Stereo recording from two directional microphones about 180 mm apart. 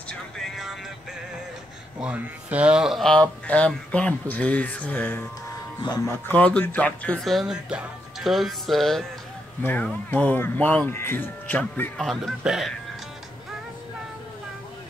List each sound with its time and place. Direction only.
0.1 s music: centre (ahead or behind)
2.0 s speech: 10° right (ahead or behind); by 5.2 s 10° left (ahead or behind)
6.2 s speech: 10° left (ahead or behind)